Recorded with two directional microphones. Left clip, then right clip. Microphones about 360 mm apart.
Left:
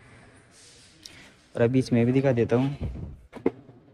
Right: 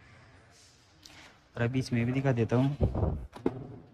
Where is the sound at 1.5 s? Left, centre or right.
Centre.